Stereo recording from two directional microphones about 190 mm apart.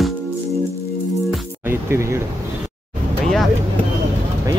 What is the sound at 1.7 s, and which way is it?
Speech, 15° right (ahead or behind).